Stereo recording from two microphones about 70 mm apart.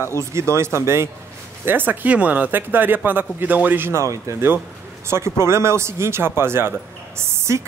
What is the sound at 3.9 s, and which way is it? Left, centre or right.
A man's voice, right.